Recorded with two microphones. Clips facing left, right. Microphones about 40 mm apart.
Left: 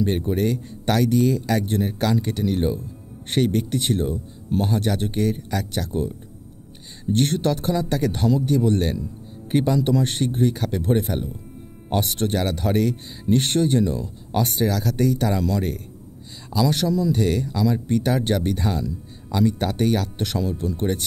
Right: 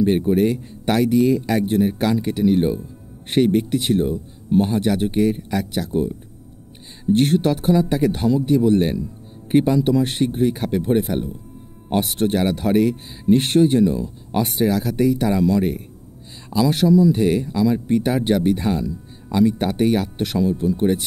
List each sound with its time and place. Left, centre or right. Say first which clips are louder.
0.0 s speech: right 5 dB; centre